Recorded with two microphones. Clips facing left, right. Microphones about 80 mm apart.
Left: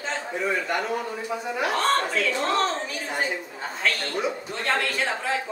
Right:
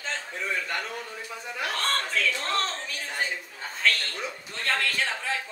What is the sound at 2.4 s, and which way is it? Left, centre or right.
A woman's voice, centre.